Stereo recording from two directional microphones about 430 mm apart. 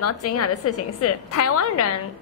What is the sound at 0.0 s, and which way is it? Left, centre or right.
A woman's voice, left.